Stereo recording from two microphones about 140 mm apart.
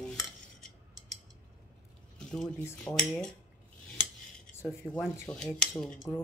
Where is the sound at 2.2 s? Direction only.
5° left (ahead or behind).